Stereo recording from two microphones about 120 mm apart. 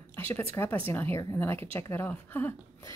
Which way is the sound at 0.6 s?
15° left (ahead or behind).